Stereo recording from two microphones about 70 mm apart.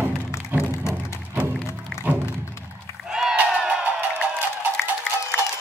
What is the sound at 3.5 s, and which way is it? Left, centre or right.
Music, centre.